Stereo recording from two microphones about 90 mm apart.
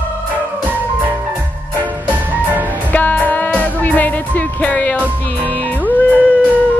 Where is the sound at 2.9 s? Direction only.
20° left (ahead or behind).